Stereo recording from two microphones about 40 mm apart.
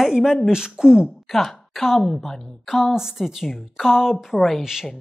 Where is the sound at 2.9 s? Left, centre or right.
Centre.